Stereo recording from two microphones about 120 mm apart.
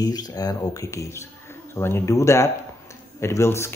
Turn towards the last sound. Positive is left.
turn(degrees=20)  # may be behind; listen again after turning